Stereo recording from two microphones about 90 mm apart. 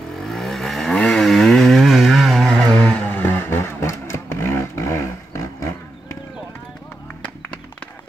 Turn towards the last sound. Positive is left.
turn(degrees=10)  # may be behind; listen again after turning